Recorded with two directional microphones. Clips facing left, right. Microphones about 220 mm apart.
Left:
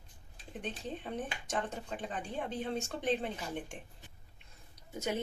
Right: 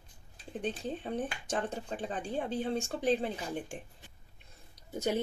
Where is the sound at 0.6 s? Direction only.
35° right (ahead or behind).